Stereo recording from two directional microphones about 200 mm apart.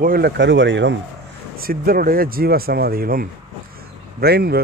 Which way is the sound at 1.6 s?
45° right (ahead or behind).